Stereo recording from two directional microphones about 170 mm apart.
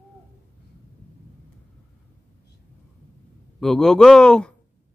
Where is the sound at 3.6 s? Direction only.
Centre (ahead or behind).